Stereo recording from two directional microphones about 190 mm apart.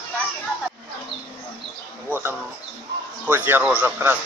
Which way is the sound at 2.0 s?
10° right (ahead or behind).